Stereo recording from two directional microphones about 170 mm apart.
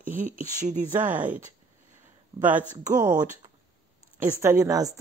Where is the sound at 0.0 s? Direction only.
50° right (ahead or behind).